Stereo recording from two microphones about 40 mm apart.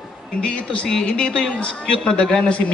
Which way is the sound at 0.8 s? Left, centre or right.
Centre.